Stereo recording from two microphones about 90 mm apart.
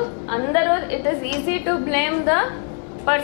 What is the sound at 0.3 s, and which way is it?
A woman's voice, 15° left (ahead or behind).